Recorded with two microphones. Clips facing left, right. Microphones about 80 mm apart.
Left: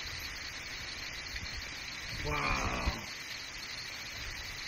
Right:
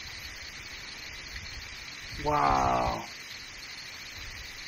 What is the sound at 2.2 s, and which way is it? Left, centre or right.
Speech, right.